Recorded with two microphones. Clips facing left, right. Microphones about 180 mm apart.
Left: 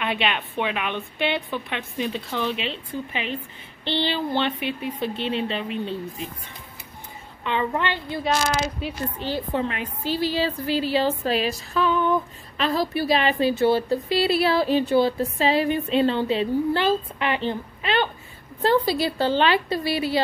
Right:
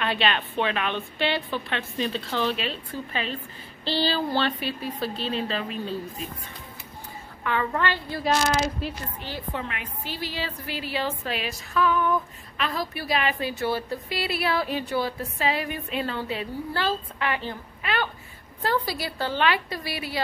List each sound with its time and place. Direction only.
0.0 s a woman's voice: 15° left (ahead or behind)
7.4 s a woman's voice: 20° left (ahead or behind)
8.8 s a woman's voice: centre (ahead or behind)
9.2 s a woman's voice: 30° left (ahead or behind)